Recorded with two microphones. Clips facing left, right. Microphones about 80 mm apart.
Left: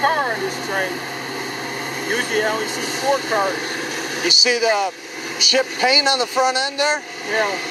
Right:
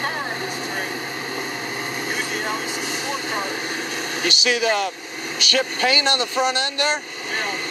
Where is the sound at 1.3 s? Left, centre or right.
Centre.